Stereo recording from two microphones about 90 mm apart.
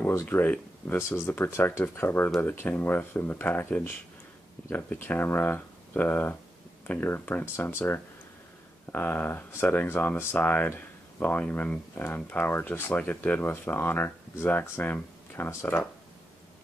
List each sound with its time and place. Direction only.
0.0 s speech: 25° left (ahead or behind)
4.9 s speech: 20° left (ahead or behind)